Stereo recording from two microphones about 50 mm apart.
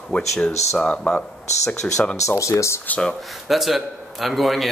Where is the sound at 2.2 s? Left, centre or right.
Left.